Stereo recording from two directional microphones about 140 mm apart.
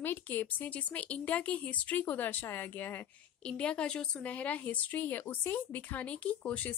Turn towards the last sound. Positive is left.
turn(degrees=10)  # may be behind; listen again after turning